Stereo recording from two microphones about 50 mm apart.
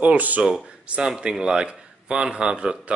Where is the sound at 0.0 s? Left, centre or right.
Right.